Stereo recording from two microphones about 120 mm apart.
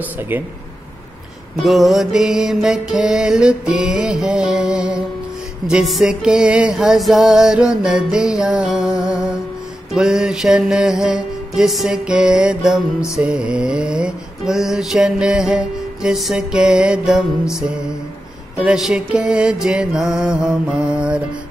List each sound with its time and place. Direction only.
0.0 s mantra: 15° right (ahead or behind)
1.7 s music: centre (ahead or behind)
18.6 s mantra: 5° right (ahead or behind)